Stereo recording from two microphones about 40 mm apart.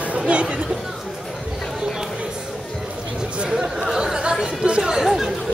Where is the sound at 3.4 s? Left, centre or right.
Right.